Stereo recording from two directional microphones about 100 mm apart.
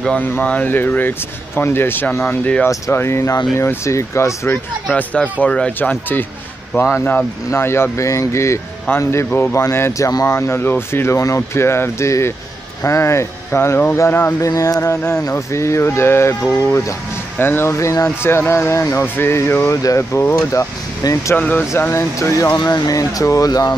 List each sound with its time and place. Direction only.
0.2 s speech: 15° left (ahead or behind)
2.7 s speech: 25° left (ahead or behind)
4.9 s speech: 15° left (ahead or behind)
14.5 s speech: 35° left (ahead or behind)
21.4 s speech: 15° left (ahead or behind)
22.5 s speech: 40° left (ahead or behind)